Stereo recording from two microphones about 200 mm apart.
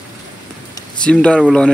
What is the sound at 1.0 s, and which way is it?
Speech, 5° left (ahead or behind).